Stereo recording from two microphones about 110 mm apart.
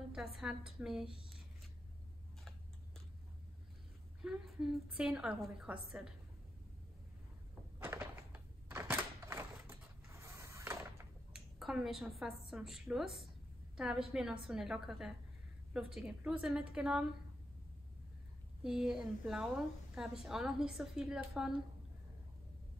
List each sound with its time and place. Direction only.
0.1 s a woman's voice: 5° right (ahead or behind)
4.2 s a woman's voice: 5° right (ahead or behind)
7.8 s a sound: 20° right (ahead or behind)
11.3 s a woman's voice: 5° right (ahead or behind)
18.6 s a woman's voice: 5° right (ahead or behind)